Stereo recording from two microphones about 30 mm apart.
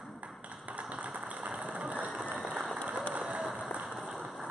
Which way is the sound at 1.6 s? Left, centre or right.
Right.